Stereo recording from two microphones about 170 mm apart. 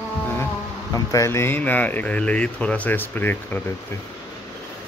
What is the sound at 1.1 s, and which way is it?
Speech, 15° left (ahead or behind).